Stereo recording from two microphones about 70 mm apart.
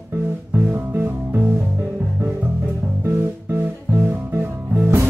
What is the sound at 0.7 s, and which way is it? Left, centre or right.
Music, right.